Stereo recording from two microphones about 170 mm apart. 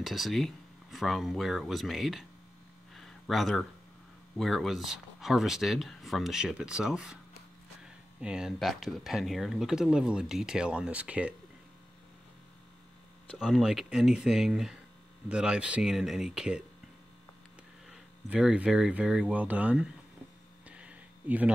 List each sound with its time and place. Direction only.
0.0 s speech: centre (ahead or behind)
2.9 s a sound: centre (ahead or behind)
4.4 s speech: centre (ahead or behind)
13.4 s speech: 5° right (ahead or behind)
17.8 s speech: 5° right (ahead or behind)
20.6 s a sound: 10° right (ahead or behind)